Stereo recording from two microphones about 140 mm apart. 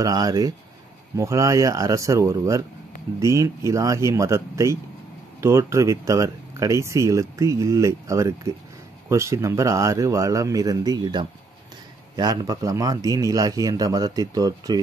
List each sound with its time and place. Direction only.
0.0 s speech: 25° right (ahead or behind)